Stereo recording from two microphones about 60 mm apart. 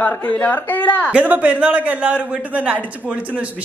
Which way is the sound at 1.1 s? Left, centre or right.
Right.